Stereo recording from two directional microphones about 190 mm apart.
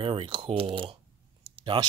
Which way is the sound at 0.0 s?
30° right (ahead or behind).